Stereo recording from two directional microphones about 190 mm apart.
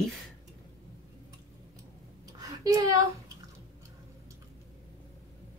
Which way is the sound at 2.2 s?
20° right (ahead or behind).